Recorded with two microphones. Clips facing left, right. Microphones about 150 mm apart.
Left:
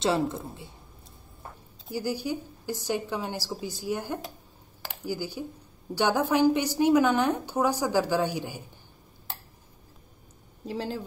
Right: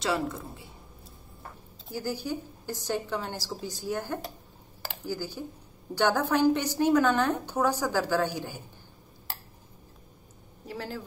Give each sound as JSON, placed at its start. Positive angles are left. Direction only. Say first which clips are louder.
{"t": 0.0, "sound": "a woman's voice", "louder": "left 3 dB", "side_deg": 25}
{"t": 1.9, "sound": "a woman's voice", "louder": "left 2 dB", "side_deg": 10}
{"t": 10.7, "sound": "a woman's voice", "louder": "left 4 dB", "side_deg": 20}